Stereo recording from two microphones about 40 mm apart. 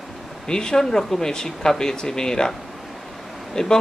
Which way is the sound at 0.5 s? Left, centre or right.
Centre.